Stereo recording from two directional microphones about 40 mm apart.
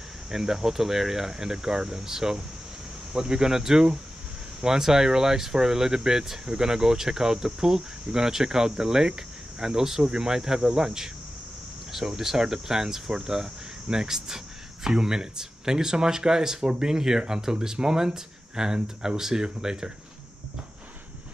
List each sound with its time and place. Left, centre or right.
0.3 s speech: centre